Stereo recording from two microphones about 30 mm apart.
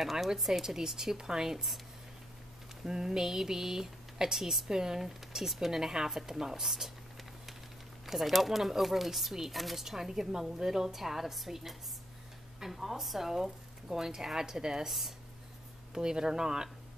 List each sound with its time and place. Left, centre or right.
0.0 s speech: centre
2.8 s speech: centre
6.6 s speech: centre
8.1 s speech: centre
9.8 s speech: centre
14.9 s speech: centre
15.9 s speech: right